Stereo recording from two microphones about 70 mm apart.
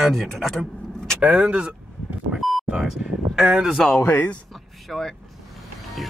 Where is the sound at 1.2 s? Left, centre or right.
Centre.